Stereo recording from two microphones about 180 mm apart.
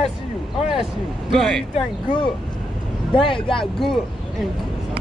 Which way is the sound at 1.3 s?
Centre (ahead or behind).